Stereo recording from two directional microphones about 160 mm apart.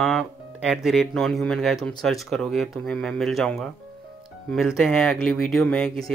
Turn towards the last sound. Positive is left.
turn(degrees=5)  # may be behind; listen again after turning